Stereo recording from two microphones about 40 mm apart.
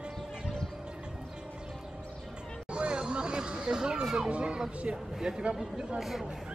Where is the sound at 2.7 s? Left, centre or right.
Right.